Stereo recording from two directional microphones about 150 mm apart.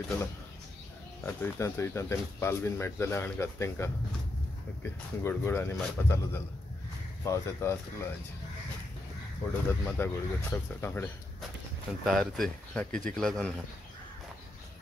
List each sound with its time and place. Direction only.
1.2 s speech: 15° left (ahead or behind)
9.7 s speech: 15° left (ahead or behind)
12.0 s speech: centre (ahead or behind)